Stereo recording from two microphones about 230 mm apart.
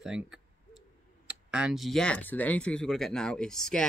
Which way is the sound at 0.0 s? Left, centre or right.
Centre.